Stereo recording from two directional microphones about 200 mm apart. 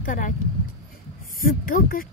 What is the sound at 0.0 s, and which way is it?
Speech, 40° left (ahead or behind).